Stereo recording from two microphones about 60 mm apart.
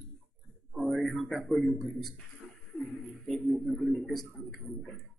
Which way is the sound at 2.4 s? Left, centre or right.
Centre.